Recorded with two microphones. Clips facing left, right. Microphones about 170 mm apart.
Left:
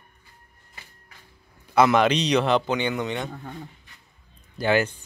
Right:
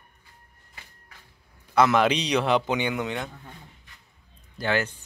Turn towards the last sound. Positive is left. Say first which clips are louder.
# left 4 dB
turn(degrees=15)  # may be behind; listen again after turning